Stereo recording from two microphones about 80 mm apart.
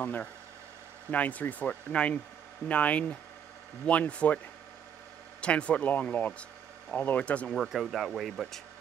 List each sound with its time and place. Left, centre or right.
0.0 s speech: left
5.4 s speech: centre
7.5 s speech: centre